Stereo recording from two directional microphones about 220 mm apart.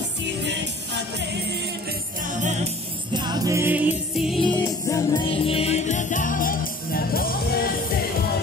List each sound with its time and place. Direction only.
2.4 s music: 25° right (ahead or behind); by 4.6 s centre (ahead or behind)
4.6 s music: 15° left (ahead or behind); by 7.7 s 40° left (ahead or behind)